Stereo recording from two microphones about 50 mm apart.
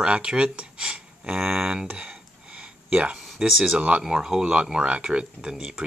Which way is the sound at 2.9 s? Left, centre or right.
Right.